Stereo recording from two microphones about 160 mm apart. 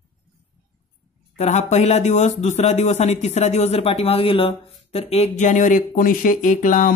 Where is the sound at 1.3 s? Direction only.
45° left (ahead or behind).